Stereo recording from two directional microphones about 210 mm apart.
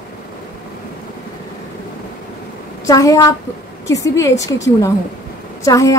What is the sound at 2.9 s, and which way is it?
A woman's voice, 15° left (ahead or behind).